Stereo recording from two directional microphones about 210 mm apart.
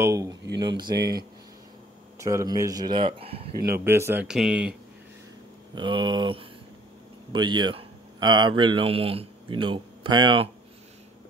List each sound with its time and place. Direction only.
0.0 s speech: 15° right (ahead or behind)
0.9 s speech: 50° right (ahead or behind)
2.1 s speech: 15° right (ahead or behind)
3.6 s speech: 10° right (ahead or behind)
5.8 s speech: 20° right (ahead or behind)